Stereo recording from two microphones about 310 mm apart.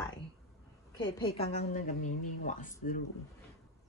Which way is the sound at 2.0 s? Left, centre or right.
Left.